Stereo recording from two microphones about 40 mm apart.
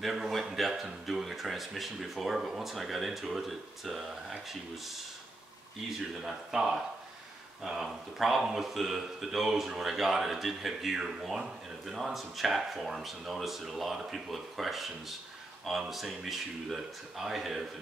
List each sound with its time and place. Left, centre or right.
0.0 s speech: centre
5.9 s speech: centre